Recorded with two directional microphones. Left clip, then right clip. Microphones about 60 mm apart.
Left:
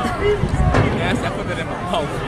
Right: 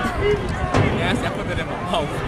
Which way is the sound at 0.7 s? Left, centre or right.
Right.